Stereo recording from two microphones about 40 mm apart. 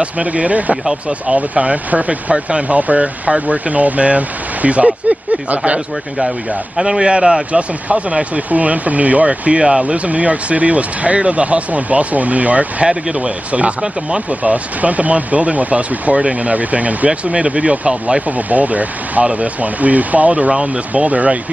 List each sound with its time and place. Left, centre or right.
0.0 s speech: right
6.8 s speech: centre
8.5 s speech: right
9.6 s speech: centre
9.8 s speech: right
18.5 s speech: right